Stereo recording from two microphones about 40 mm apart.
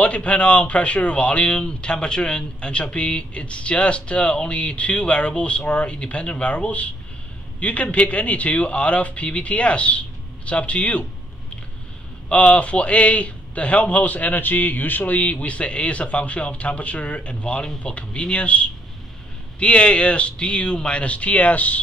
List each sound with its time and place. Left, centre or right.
0.0 s a man's voice: left
12.3 s a man's voice: left